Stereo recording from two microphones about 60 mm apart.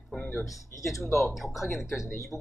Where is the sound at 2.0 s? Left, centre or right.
Left.